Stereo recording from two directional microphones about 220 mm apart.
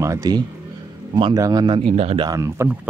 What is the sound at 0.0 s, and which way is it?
Speech, 15° right (ahead or behind).